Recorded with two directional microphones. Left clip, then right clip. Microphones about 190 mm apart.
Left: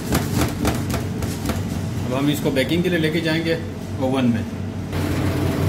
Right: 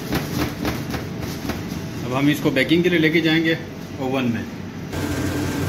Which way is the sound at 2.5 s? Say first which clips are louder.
Right 4 dB; 35° right (ahead or behind).